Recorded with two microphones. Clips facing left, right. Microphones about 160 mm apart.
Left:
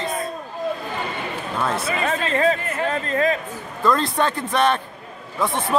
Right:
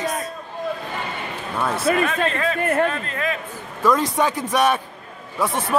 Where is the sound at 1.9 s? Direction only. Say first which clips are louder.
Right 7 dB; 50° right (ahead or behind).